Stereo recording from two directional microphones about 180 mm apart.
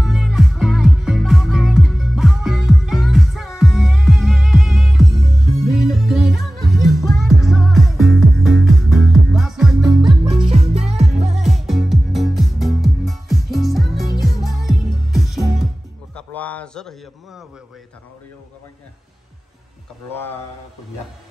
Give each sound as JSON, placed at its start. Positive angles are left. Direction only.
{"t": 0.0, "sound": "music", "side_deg": 0}
{"t": 9.8, "sound": "music", "side_deg": -25}
{"t": 10.5, "sound": "music", "side_deg": -35}
{"t": 11.3, "sound": "music", "side_deg": 0}
{"t": 16.2, "sound": "a sound", "side_deg": 10}
{"t": 20.1, "sound": "speech", "side_deg": 10}